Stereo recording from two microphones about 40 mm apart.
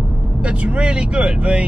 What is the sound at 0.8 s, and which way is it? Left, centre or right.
Speech, right.